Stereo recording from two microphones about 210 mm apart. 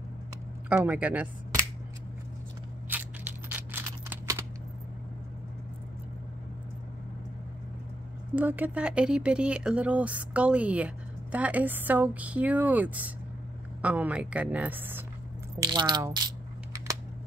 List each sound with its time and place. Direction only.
0.7 s speech: 5° right (ahead or behind)
2.9 s scissors: 10° right (ahead or behind)
8.4 s speech: 10° right (ahead or behind)
15.6 s coin: 20° right (ahead or behind)